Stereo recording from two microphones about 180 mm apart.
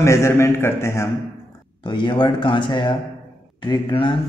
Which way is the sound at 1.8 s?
25° left (ahead or behind).